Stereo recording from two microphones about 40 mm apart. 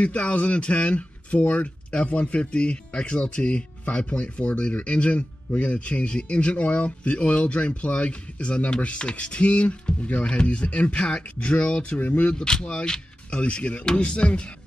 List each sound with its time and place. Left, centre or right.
0.0 s speech: left
12.0 s speech: left
12.3 s speech: left